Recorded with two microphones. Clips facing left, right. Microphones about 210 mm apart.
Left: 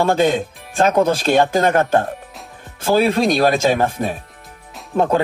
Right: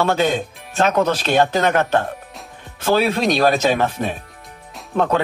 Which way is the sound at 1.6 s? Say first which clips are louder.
Left 2 dB; 30° left (ahead or behind).